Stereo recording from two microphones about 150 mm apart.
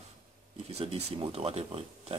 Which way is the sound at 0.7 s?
45° right (ahead or behind).